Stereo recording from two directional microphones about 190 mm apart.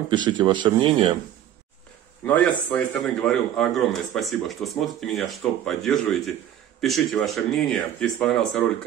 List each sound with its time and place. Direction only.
0.1 s speech: 25° right (ahead or behind)
2.2 s a man's voice: 10° left (ahead or behind)